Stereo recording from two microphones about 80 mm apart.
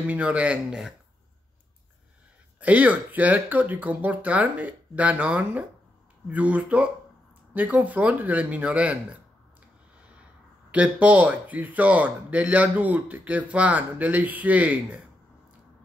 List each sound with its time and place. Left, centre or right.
0.0 s speech: centre
2.6 s speech: centre
10.7 s speech: centre